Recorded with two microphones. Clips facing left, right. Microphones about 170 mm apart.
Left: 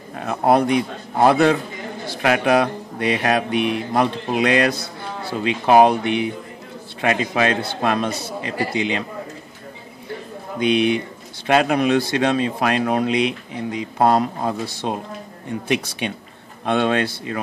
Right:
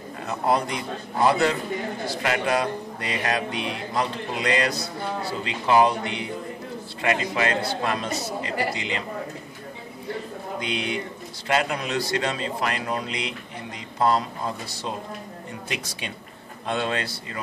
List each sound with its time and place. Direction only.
0.2 s a man's voice: 60° left (ahead or behind)
2.2 s mantra: 65° left (ahead or behind)
10.6 s mantra: 65° left (ahead or behind)
16.0 s mantra: 65° left (ahead or behind)